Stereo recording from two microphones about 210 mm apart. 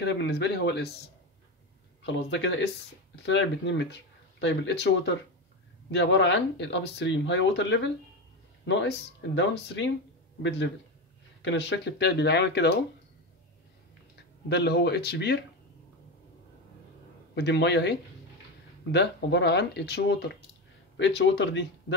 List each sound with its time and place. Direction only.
0.0 s speech: 55° left (ahead or behind)
11.4 s speech: 55° left (ahead or behind)
14.5 s speech: 50° left (ahead or behind)
17.4 s speech: 55° left (ahead or behind)